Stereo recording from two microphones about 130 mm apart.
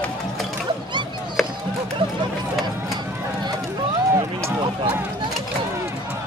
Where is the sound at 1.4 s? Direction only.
Centre (ahead or behind).